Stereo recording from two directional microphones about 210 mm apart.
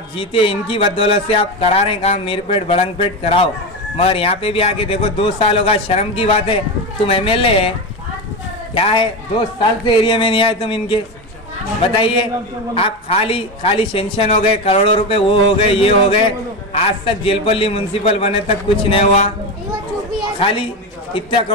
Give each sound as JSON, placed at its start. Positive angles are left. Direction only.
{"t": 0.1, "sound": "a man's voice", "side_deg": 25}
{"t": 8.7, "sound": "a man's voice", "side_deg": 25}
{"t": 20.3, "sound": "a man's voice", "side_deg": 25}